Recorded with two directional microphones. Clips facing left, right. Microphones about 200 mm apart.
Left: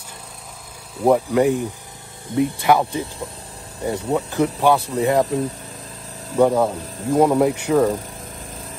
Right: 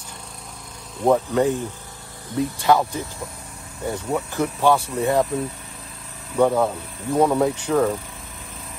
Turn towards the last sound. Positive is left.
turn(degrees=15)  # may be behind; listen again after turning